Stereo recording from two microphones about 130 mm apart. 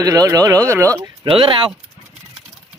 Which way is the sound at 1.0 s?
40° right (ahead or behind).